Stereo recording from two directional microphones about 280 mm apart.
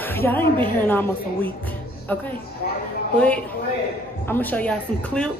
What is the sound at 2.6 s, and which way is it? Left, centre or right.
Speech, left.